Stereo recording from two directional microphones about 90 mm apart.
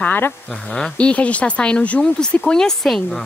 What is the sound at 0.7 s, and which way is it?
Speech, 10° left (ahead or behind).